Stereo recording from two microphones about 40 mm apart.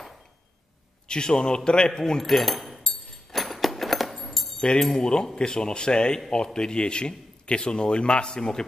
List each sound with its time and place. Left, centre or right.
1.0 s a man's voice: centre
2.2 s speech: centre
3.3 s keys jangling: centre
4.7 s a man's voice: centre